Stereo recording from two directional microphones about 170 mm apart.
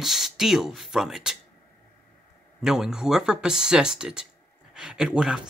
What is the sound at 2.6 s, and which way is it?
Speech, 5° right (ahead or behind).